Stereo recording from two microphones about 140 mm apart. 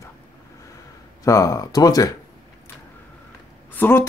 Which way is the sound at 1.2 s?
25° left (ahead or behind).